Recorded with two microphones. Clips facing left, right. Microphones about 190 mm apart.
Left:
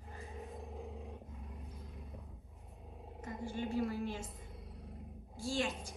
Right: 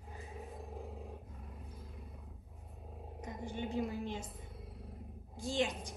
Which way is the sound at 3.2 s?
15° right (ahead or behind).